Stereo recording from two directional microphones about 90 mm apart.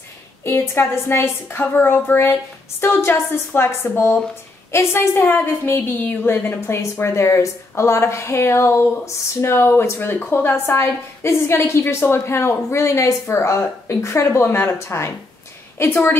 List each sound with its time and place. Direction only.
0.4 s a woman's voice: 30° left (ahead or behind)